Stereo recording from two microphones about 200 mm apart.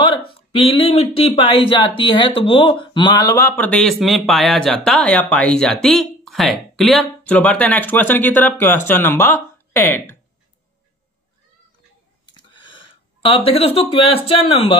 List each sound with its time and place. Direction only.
0.3 s speech: 30° left (ahead or behind); by 10.1 s 10° left (ahead or behind)
12.4 s speech: 25° left (ahead or behind)